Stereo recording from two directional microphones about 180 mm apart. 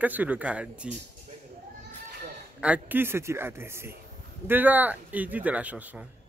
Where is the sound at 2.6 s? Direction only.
10° right (ahead or behind).